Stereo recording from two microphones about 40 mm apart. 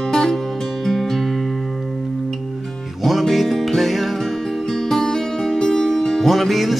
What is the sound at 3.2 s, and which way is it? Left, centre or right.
Music, centre.